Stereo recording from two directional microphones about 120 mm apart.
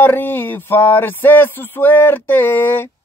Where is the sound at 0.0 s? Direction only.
15° left (ahead or behind).